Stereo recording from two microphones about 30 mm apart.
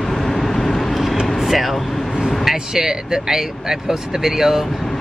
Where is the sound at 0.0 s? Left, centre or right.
Centre.